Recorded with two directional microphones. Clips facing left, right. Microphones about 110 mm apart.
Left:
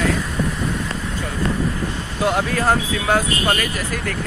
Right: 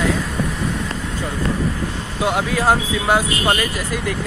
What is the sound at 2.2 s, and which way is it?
Speech, 15° right (ahead or behind).